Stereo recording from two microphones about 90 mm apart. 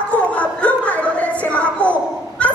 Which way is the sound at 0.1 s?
15° left (ahead or behind).